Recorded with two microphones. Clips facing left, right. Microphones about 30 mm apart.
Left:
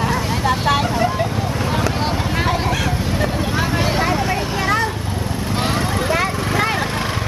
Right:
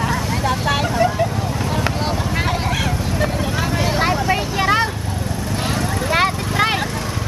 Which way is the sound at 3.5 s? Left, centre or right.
Centre.